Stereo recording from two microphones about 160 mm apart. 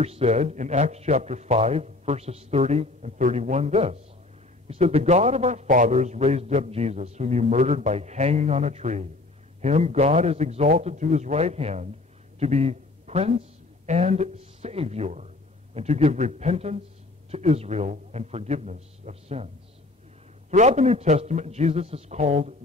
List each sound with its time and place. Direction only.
0.0 s a man's voice: 40° right (ahead or behind)